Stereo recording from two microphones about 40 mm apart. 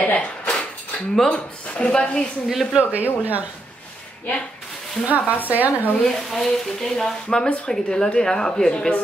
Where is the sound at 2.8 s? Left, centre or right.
Right.